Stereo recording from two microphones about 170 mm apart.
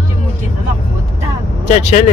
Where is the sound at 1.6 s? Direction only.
40° left (ahead or behind).